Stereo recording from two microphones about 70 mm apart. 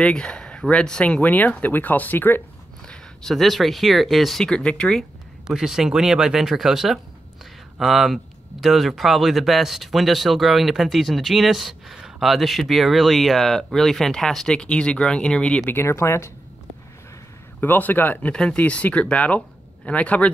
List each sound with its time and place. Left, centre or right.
0.0 s speech: centre; by 2.4 s left
2.9 s speech: centre
5.5 s speech: centre
15.6 s speech: left
17.6 s a man's voice: left
18.3 s speech: centre